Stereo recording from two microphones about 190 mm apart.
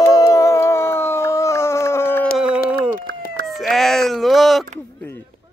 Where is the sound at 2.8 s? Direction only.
50° right (ahead or behind).